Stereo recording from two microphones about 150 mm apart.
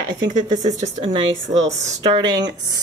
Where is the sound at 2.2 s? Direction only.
25° right (ahead or behind).